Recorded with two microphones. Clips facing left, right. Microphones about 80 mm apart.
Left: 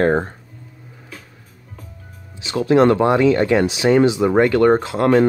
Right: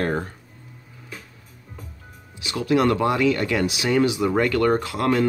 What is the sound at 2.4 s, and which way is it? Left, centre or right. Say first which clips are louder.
Speech: left 6 dB; left.